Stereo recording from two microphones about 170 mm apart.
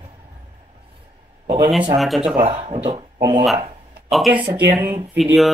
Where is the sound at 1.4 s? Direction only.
30° right (ahead or behind).